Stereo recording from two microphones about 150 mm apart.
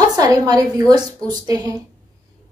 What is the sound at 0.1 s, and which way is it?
A woman's voice, 25° right (ahead or behind).